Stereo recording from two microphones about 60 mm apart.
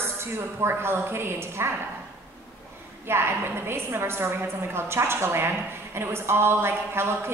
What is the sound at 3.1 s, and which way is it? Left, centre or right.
A woman's voice, right.